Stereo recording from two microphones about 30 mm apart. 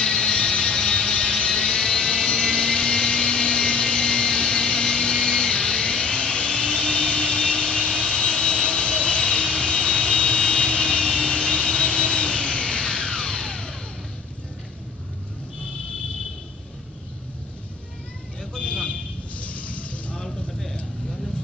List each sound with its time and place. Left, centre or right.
0.0 s music: left
18.6 s vehicle: left
19.4 s a sound: left
20.2 s vehicle: centre